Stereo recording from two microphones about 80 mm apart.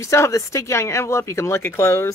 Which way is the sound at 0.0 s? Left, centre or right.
Left.